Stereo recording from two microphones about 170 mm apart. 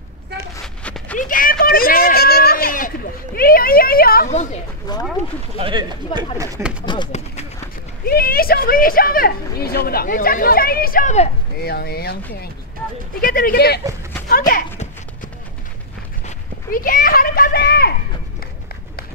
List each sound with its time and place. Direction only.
0.8 s a sound: 10° left (ahead or behind)
1.2 s a woman's voice: 55° left (ahead or behind)
4.9 s speech: 25° left (ahead or behind)
5.6 s speech: 30° right (ahead or behind)
6.3 s speech: 20° right (ahead or behind)
6.9 s speech: 25° left (ahead or behind)
8.0 s a woman's voice: 60° left (ahead or behind)
11.6 s speech: 65° left (ahead or behind)
13.2 s a woman's voice: 55° left (ahead or behind)
16.3 s a child's voice: 55° left (ahead or behind)